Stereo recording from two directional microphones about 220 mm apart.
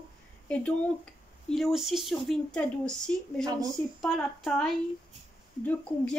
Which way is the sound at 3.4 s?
15° right (ahead or behind).